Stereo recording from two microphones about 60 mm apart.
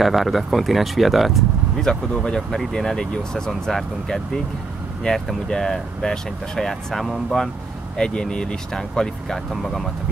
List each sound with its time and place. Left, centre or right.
0.0 s speech: centre